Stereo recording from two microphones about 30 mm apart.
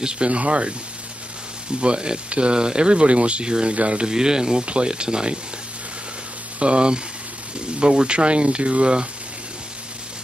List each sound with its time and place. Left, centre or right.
0.0 s speech: right
0.3 s speech: right
1.8 s speech: right
3.7 s speech: right
4.1 s speech: right
4.6 s speech: right
6.6 s speech: right